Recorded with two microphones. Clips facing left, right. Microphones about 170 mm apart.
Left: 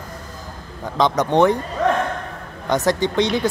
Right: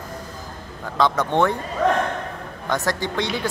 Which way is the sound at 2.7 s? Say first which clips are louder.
Left 5 dB; 20° left (ahead or behind).